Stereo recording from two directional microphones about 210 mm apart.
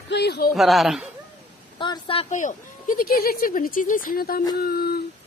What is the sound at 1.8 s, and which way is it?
A woman's voice, 25° left (ahead or behind).